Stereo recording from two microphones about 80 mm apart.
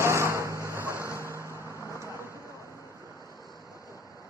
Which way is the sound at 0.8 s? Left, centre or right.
Left.